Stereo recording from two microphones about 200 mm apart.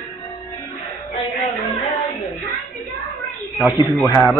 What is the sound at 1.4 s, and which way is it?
Music, 15° left (ahead or behind).